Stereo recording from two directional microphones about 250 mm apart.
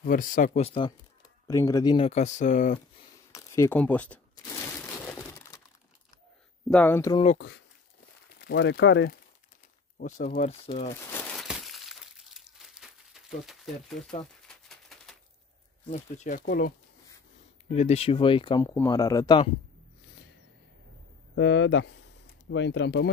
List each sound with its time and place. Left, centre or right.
0.0 s speech: left
1.5 s speech: centre; by 2.8 s left
3.3 s a sound: centre
6.7 s speech: centre
7.2 s speech: left
9.9 s speech: left
11.1 s glass: centre
14.7 s a sound: centre
15.9 s speech: left
21.4 s speech: left